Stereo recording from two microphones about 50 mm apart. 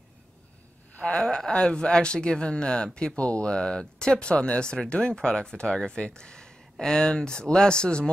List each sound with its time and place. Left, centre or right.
0.9 s speech: centre